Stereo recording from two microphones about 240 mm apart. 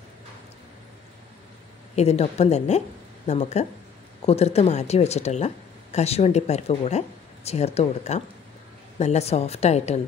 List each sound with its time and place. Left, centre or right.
2.0 s speech: left